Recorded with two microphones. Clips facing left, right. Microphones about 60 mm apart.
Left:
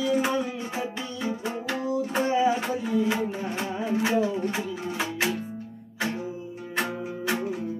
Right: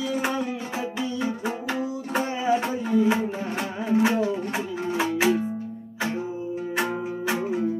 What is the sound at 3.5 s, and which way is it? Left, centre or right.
Music, right.